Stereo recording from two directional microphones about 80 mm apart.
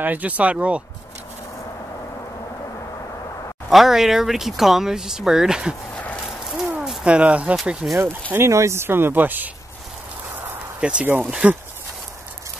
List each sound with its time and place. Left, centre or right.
0.0 s speech: right
3.7 s speech: centre
5.9 s a sound: centre
6.2 s a sound: centre
7.1 s speech: centre
8.5 s speech: right
10.8 s speech: centre